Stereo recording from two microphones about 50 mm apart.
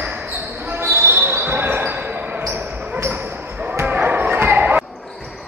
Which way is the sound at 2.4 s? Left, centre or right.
Right.